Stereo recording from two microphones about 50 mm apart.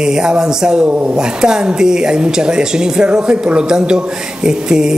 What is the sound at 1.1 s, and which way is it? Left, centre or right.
Speech, centre.